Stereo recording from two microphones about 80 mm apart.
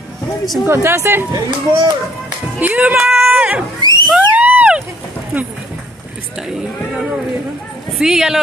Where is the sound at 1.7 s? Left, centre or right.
Right.